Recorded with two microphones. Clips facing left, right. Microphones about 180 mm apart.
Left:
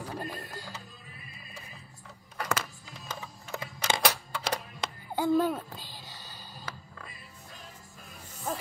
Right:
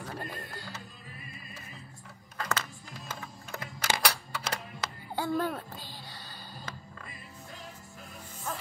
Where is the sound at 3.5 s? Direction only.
25° left (ahead or behind).